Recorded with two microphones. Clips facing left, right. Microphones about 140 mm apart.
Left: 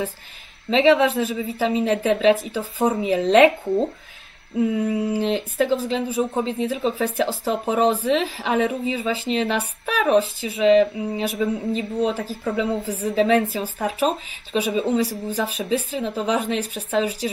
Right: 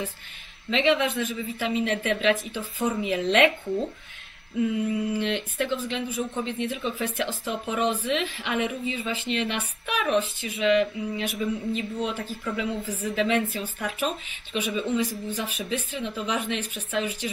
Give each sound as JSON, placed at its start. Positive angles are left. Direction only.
{"t": 0.7, "sound": "speech", "side_deg": 35}